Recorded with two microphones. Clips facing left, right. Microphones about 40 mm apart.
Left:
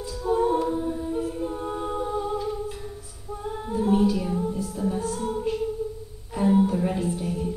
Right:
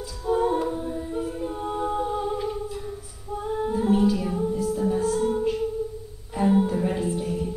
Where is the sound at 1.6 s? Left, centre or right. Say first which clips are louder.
Right 2 dB; centre.